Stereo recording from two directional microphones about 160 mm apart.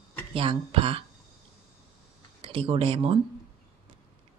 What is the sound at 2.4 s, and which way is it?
Speech, 35° right (ahead or behind).